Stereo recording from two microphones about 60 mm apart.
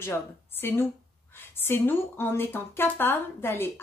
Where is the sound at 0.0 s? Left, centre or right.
Left.